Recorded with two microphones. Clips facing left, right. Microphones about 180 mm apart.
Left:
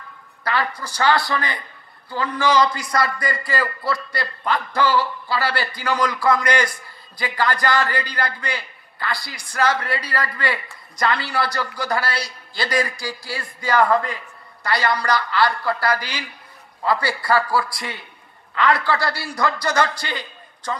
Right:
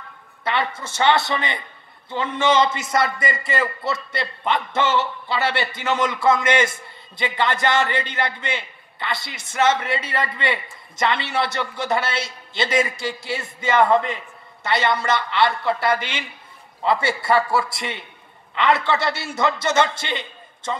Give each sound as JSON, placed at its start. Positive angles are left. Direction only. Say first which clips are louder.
{"t": 0.4, "sound": "a man's voice", "louder": "even", "side_deg": -25}